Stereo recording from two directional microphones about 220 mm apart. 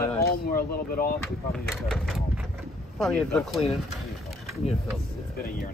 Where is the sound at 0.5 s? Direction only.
40° left (ahead or behind).